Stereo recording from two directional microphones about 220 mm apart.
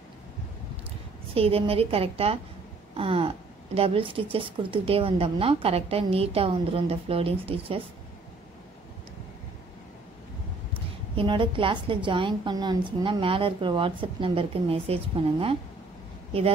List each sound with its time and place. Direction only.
1.3 s a woman's voice: 25° right (ahead or behind)
11.1 s a woman's voice: 20° right (ahead or behind)